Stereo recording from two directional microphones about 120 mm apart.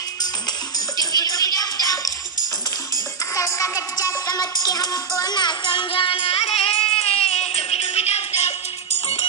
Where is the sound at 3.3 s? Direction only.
25° left (ahead or behind); by 8.5 s 60° left (ahead or behind).